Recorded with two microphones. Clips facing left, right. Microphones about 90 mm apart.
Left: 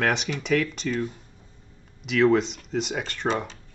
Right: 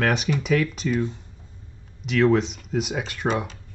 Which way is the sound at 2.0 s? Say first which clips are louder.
Right 1 dB; centre (ahead or behind).